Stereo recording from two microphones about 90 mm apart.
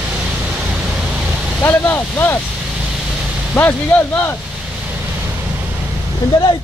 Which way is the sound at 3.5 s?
20° left (ahead or behind).